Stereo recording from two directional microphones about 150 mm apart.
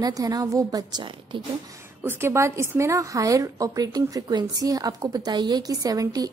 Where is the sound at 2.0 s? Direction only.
15° right (ahead or behind).